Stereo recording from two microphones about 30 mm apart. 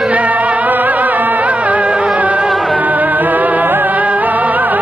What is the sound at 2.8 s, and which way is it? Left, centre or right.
Music, right.